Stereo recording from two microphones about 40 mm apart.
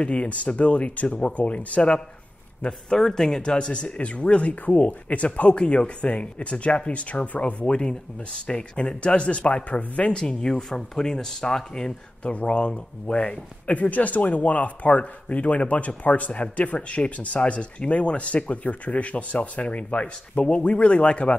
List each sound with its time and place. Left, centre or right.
0.0 s speech: left
2.9 s speech: centre; by 10.1 s left
10.1 s speech: centre
12.2 s speech: left